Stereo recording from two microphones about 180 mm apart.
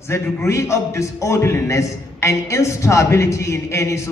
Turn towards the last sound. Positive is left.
turn(degrees=15)  # may be behind; listen again after turning